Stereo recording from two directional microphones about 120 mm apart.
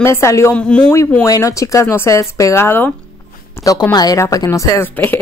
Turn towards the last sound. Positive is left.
turn(degrees=15)  # may be behind; listen again after turning